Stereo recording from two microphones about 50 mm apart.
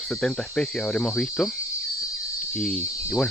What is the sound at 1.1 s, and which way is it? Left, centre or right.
Speech, centre.